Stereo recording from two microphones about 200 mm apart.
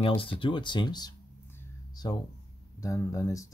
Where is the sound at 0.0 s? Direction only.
25° left (ahead or behind).